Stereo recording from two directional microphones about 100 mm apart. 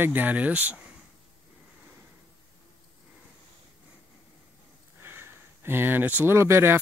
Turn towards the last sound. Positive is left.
turn(degrees=-25)  # may be behind; listen again after turning